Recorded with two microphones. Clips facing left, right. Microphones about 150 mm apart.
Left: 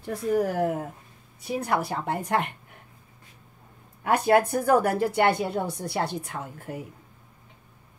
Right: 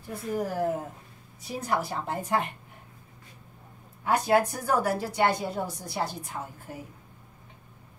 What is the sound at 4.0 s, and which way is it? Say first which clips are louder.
A woman's voice: left 3 dB; 60° left (ahead or behind).